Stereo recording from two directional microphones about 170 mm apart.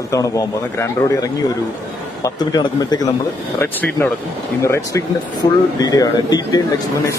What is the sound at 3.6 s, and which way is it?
A man's voice, 10° left (ahead or behind).